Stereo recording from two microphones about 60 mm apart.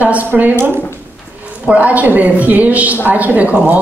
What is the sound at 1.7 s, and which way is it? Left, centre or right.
A woman's voice, right.